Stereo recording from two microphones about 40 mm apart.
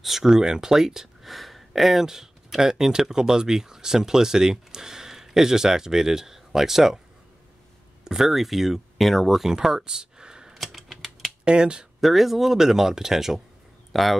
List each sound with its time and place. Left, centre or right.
0.0 s speech: centre
1.3 s speech: centre
8.0 s speech: centre
10.5 s typing: centre
11.4 s speech: right
12.0 s speech: centre